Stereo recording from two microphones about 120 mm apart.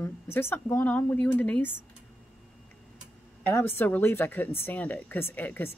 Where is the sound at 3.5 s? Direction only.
20° left (ahead or behind).